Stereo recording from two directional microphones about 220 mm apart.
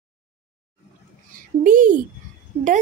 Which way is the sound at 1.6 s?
35° right (ahead or behind).